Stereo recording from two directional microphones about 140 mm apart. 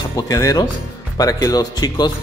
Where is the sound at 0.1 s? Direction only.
25° left (ahead or behind).